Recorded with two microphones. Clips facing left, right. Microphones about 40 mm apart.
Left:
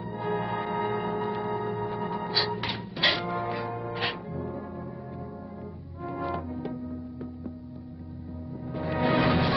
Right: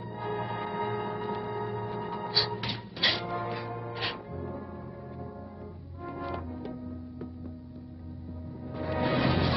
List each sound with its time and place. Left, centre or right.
0.0 s music: centre
2.6 s music: centre
3.1 s music: centre
6.0 s music: centre
8.6 s music: centre